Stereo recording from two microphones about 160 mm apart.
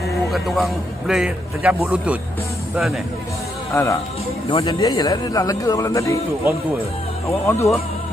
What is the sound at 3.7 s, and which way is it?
Speech, 20° left (ahead or behind).